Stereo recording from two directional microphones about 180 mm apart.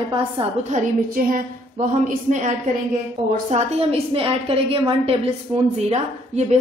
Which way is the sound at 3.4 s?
35° right (ahead or behind).